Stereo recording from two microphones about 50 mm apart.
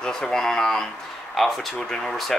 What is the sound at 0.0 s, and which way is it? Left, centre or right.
Speech, centre.